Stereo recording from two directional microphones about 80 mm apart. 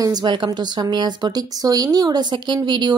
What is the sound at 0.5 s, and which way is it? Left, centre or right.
Speech, right.